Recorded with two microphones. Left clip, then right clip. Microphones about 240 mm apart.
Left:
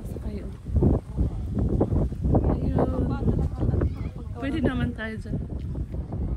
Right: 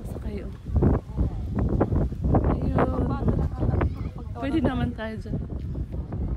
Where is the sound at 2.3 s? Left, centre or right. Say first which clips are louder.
Right 1 dB; centre.